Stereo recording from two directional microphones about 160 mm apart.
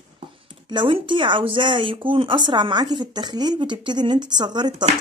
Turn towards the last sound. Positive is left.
turn(degrees=-25)  # may be behind; listen again after turning